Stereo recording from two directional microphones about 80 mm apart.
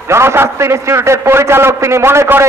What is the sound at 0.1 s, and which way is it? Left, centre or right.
A man's voice, right.